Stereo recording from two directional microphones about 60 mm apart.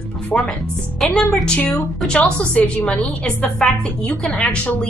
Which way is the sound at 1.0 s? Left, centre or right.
Centre.